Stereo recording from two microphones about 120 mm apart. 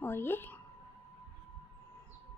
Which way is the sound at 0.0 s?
20° left (ahead or behind).